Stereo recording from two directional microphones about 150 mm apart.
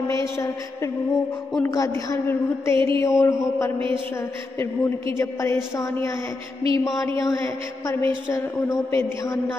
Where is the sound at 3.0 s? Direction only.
20° left (ahead or behind).